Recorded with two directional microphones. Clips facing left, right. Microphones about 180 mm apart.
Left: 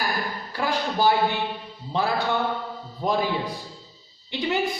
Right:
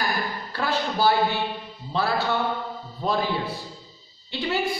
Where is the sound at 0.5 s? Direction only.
15° left (ahead or behind).